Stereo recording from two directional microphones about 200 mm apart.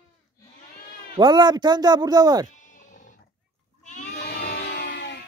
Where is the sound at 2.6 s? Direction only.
40° left (ahead or behind).